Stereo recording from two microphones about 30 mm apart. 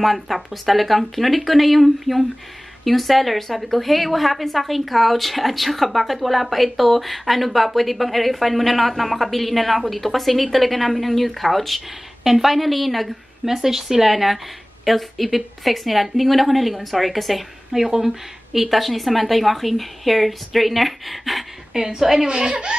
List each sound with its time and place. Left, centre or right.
0.0 s a woman's voice: centre
13.6 s speech: centre
21.7 s speech: centre
22.3 s speech: right